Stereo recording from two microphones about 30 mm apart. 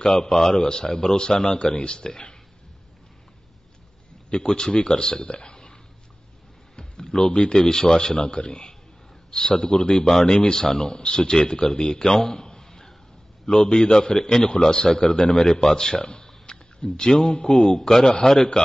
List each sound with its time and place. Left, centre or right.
0.0 s speech: centre
4.3 s speech: left
4.7 s speech: left
5.2 s a sound: left
7.6 s a man's voice: centre